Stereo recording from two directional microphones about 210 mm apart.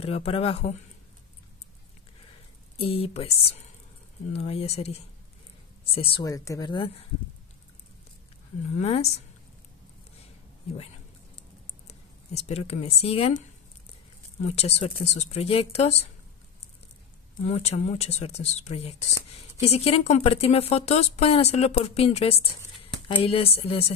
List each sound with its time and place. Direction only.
0.0 s speech: 30° left (ahead or behind)
2.8 s speech: 25° left (ahead or behind)
8.7 s speech: 30° left (ahead or behind)
11.9 s speech: 30° left (ahead or behind)
14.5 s speech: 30° left (ahead or behind)
17.5 s speech: 30° left (ahead or behind)